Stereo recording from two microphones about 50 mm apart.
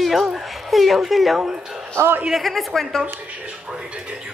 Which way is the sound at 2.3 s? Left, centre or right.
Centre.